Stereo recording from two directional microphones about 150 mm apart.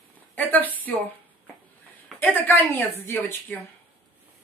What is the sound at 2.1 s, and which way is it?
A woman's voice, 15° left (ahead or behind).